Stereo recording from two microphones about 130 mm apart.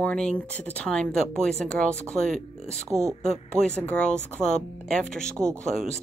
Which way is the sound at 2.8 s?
20° right (ahead or behind).